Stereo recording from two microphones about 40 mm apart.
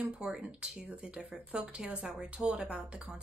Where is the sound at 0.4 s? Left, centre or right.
Right.